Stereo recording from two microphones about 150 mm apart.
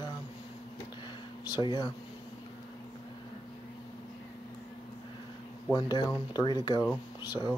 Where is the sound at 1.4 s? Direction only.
25° left (ahead or behind).